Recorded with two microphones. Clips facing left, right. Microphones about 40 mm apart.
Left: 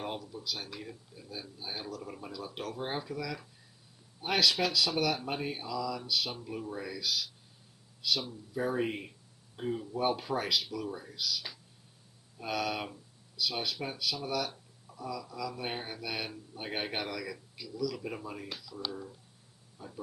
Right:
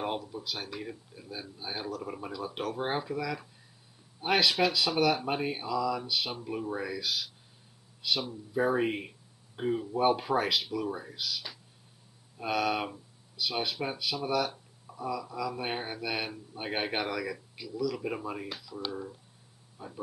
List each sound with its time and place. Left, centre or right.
0.0 s speech: centre